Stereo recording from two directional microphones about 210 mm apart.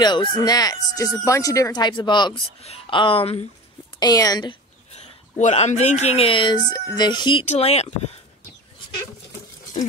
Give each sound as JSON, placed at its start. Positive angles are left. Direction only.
{"t": 0.0, "sound": "speech", "side_deg": 20}
{"t": 4.0, "sound": "a sound", "side_deg": 20}
{"t": 5.4, "sound": "speech", "side_deg": 35}